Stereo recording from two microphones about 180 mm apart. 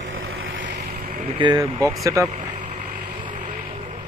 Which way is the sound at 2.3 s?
40° right (ahead or behind).